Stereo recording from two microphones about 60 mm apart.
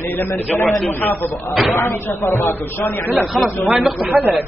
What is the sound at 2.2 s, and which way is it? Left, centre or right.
A man's voice, left.